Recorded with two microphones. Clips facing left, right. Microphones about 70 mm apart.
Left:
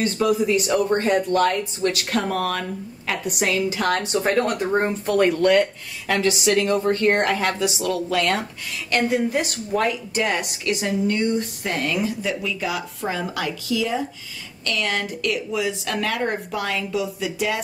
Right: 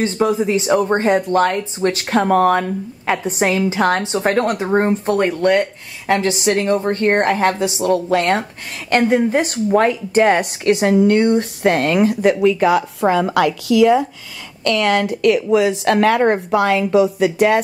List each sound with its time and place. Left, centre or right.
0.0 s speech: right
14.6 s a woman's voice: right